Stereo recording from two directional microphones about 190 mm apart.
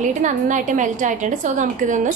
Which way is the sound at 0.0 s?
40° right (ahead or behind).